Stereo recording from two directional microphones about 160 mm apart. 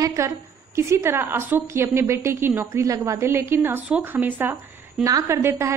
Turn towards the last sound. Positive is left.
turn(degrees=-15)  # may be behind; listen again after turning